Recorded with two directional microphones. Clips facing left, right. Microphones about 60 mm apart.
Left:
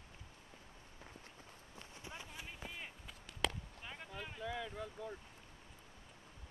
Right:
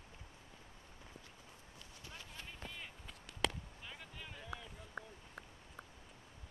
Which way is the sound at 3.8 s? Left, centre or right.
Centre.